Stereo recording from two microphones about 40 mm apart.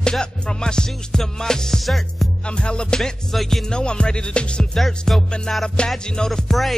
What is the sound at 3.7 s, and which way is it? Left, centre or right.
Music, left.